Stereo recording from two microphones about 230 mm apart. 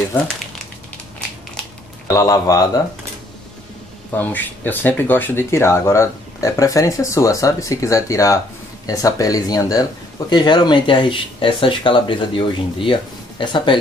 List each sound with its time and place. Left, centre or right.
2.0 s speech: centre
4.1 s speech: centre